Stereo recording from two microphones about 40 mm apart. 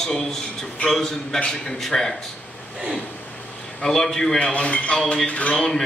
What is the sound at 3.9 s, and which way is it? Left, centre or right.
Speech, centre.